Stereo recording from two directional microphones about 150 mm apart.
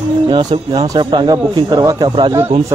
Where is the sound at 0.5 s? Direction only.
35° right (ahead or behind).